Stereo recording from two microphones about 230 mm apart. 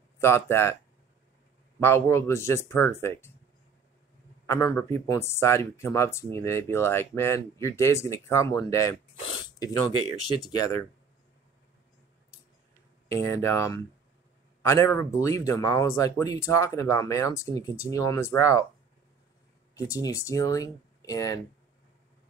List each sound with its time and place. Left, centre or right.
0.2 s speech: centre
1.8 s speech: centre
4.5 s speech: centre
13.1 s speech: centre
19.7 s speech: centre